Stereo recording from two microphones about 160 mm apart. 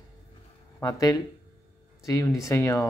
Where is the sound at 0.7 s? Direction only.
20° left (ahead or behind).